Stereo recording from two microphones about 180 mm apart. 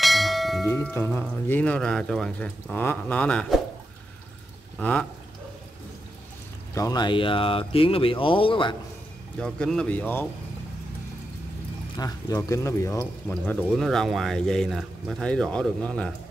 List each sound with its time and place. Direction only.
0.0 s bell: centre (ahead or behind)
0.7 s speech: 10° left (ahead or behind)
4.7 s speech: 5° left (ahead or behind)
6.7 s speech: 20° left (ahead or behind)
9.4 s speech: 5° left (ahead or behind)
12.0 s speech: 15° left (ahead or behind)